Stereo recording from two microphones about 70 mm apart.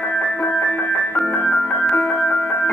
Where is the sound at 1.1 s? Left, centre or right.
Centre.